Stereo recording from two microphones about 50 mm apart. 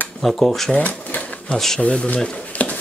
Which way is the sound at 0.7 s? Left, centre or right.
Left.